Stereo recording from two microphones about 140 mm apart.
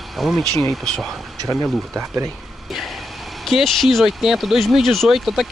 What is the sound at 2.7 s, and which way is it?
Vehicle, centre (ahead or behind).